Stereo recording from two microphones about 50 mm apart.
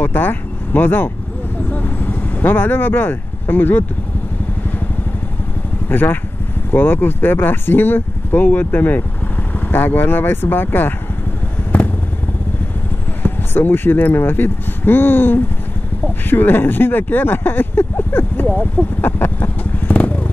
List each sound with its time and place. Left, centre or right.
0.0 s speech: left
1.7 s vehicle: left
5.9 s speech: left
13.2 s speech: left
18.5 s speech: left
18.9 s vehicle: left